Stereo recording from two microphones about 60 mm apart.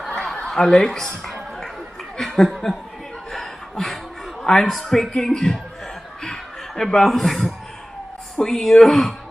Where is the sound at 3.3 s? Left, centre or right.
Centre.